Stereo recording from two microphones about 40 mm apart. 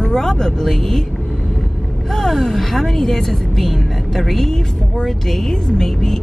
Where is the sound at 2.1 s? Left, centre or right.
Centre.